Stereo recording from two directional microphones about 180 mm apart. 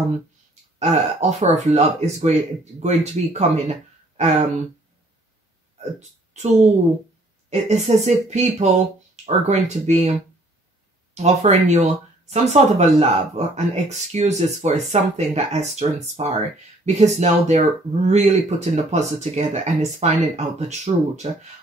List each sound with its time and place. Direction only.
0.7 s speech: 35° right (ahead or behind)
5.8 s speech: 40° right (ahead or behind)
11.2 s speech: 40° right (ahead or behind)